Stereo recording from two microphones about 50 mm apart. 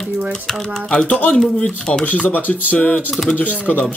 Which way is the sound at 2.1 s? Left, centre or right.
Left.